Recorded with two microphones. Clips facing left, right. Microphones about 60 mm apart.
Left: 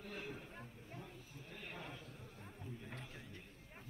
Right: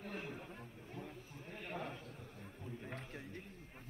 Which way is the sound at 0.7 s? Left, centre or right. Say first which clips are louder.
Right 3 dB; right.